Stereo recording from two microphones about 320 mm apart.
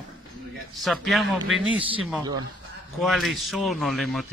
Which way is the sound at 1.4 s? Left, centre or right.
Right.